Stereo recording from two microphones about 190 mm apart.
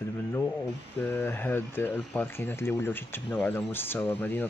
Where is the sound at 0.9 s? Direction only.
10° left (ahead or behind).